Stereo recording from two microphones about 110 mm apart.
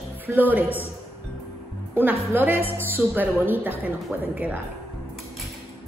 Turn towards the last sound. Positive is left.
turn(degrees=-15)  # may be behind; listen again after turning